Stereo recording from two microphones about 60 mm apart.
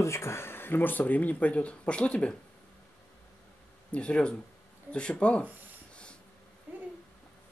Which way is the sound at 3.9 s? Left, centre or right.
Centre.